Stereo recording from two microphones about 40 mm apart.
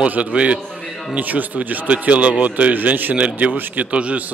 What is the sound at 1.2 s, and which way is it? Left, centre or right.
A man's voice, right.